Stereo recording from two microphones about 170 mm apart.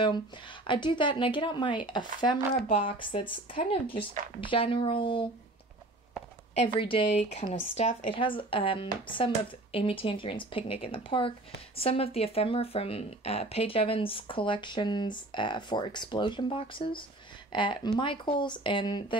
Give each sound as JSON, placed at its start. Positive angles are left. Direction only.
{"t": 0.7, "sound": "speech", "side_deg": 30}
{"t": 6.5, "sound": "speech", "side_deg": 30}
{"t": 7.2, "sound": "speech", "side_deg": 40}